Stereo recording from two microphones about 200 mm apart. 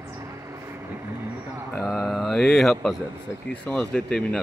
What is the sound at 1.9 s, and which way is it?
Mantra, centre (ahead or behind).